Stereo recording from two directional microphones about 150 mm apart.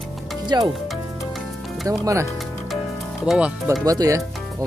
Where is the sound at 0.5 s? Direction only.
25° right (ahead or behind).